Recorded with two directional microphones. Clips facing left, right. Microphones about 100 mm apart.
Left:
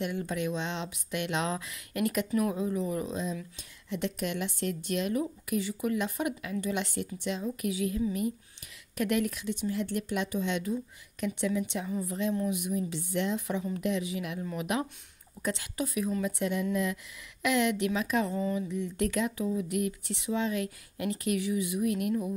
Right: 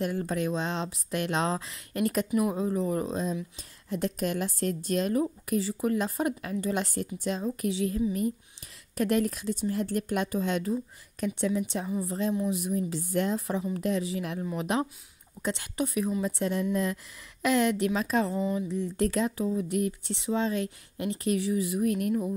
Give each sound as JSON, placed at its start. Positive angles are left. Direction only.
{"t": 0.0, "sound": "speech", "side_deg": -40}